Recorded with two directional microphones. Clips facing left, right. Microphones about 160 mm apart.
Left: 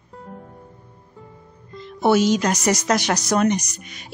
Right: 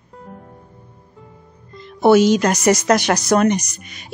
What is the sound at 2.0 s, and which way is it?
Speech, 70° right (ahead or behind).